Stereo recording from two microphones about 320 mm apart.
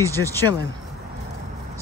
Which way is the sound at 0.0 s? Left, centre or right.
Centre.